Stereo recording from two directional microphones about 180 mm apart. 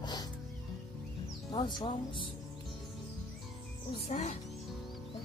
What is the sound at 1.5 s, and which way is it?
Speech, 25° left (ahead or behind).